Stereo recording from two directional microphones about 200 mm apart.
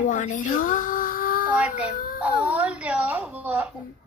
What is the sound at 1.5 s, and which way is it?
A woman's voice, 5° right (ahead or behind).